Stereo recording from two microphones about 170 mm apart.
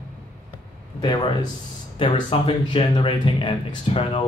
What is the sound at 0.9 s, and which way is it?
Speech, 25° left (ahead or behind).